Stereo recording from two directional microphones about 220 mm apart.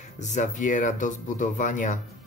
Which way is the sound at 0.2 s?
35° left (ahead or behind).